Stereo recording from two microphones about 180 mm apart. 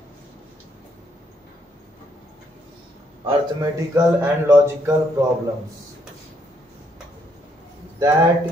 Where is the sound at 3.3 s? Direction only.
20° right (ahead or behind).